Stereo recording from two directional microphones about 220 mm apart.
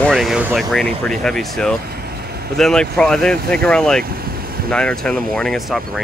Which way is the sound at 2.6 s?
Centre (ahead or behind).